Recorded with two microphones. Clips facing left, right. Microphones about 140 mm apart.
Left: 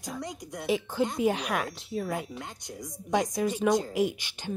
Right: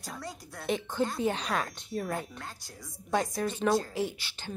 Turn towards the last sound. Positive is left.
turn(degrees=15)  # may be behind; listen again after turning